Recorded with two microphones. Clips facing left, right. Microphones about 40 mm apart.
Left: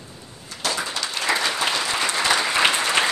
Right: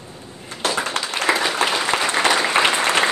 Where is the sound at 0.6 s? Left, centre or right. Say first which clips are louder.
Right 4 dB; right.